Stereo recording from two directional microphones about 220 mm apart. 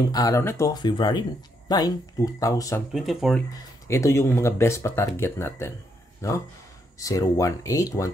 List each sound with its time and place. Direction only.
0.1 s speech: 15° left (ahead or behind)
2.9 s speech: centre (ahead or behind)
3.8 s speech: 10° left (ahead or behind)